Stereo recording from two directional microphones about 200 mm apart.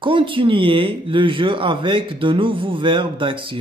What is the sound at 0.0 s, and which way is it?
A man's voice, 25° right (ahead or behind).